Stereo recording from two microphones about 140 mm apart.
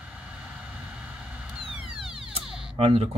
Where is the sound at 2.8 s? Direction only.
45° right (ahead or behind).